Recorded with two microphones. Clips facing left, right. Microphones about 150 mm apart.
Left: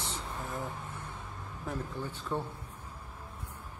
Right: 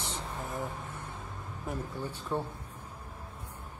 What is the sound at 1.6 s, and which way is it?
Speech, 10° right (ahead or behind).